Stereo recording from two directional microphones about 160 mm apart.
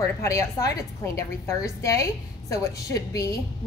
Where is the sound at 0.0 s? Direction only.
20° left (ahead or behind).